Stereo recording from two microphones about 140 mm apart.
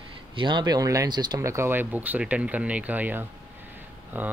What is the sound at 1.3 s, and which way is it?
Speech, 20° right (ahead or behind).